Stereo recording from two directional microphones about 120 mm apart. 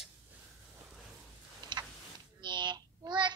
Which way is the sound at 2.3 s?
40° right (ahead or behind).